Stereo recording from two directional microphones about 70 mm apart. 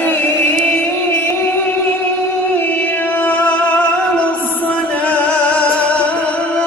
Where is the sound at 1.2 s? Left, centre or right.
Left.